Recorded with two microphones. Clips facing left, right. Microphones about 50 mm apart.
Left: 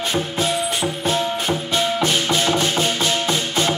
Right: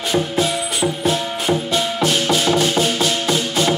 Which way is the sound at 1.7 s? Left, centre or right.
Left.